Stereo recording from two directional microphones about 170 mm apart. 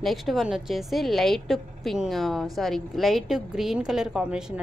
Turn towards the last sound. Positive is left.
turn(degrees=-5)  # may be behind; listen again after turning